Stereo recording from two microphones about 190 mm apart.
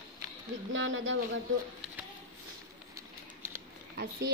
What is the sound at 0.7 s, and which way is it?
Speech, 85° right.